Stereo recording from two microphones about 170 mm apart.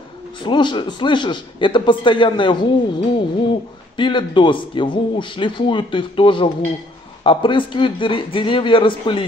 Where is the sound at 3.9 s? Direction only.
30° left (ahead or behind).